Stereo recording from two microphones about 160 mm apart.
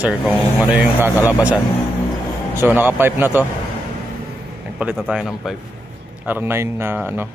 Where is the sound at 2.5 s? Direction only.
10° right (ahead or behind).